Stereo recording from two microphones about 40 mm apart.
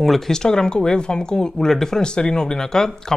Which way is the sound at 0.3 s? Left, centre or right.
Centre.